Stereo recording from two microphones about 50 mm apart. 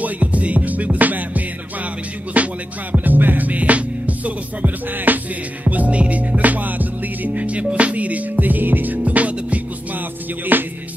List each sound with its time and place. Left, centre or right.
0.0 s music: right